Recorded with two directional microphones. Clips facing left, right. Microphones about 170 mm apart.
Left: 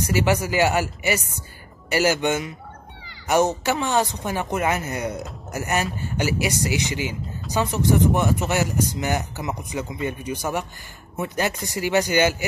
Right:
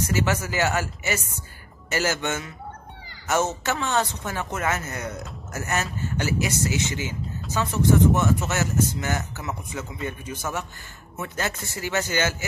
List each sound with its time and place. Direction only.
0.1 s speech: 15° left (ahead or behind)